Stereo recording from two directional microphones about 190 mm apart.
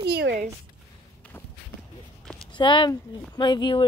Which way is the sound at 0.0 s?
55° right (ahead or behind).